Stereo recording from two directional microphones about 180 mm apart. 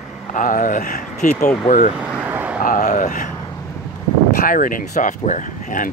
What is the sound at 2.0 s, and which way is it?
Vehicle, 5° right (ahead or behind).